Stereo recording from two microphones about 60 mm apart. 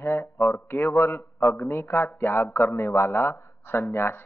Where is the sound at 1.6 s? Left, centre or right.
Left.